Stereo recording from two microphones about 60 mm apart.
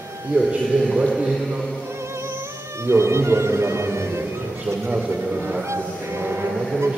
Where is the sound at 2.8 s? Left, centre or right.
Right.